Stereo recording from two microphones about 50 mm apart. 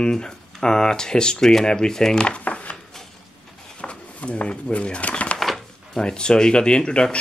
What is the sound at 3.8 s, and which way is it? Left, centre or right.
Bird, left.